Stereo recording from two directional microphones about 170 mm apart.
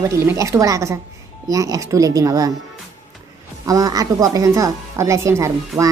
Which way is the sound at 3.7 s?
20° right (ahead or behind).